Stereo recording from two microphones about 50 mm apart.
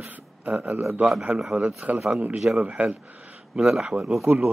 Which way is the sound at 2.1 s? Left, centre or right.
Right.